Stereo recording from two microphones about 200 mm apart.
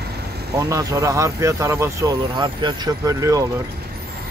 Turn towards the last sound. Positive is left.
turn(degrees=-15)  # may be behind; listen again after turning